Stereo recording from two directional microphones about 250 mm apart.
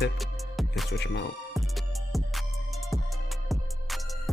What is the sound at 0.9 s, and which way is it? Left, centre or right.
Speech, left.